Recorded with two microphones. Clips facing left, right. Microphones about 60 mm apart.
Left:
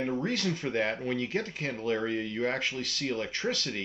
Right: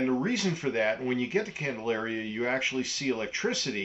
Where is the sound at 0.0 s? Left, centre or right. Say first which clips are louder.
Right 3 dB; centre.